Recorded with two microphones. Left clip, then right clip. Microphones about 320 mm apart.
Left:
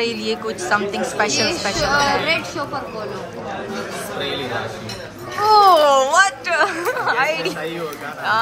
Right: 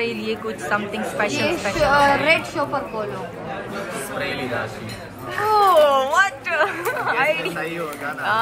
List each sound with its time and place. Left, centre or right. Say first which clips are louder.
0.0 s speech: left 3 dB; centre
1.8 s a woman's voice: right 2 dB; right
5.5 s speech: left 3 dB; centre